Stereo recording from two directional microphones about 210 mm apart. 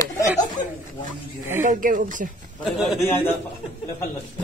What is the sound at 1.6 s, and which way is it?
Speech, 40° right (ahead or behind).